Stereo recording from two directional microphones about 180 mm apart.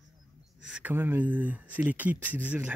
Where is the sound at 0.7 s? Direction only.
10° right (ahead or behind).